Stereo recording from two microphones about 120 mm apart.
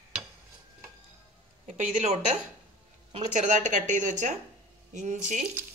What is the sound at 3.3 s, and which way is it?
Speech, 90° right.